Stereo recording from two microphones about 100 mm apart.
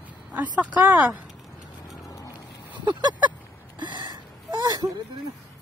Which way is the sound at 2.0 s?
35° left (ahead or behind).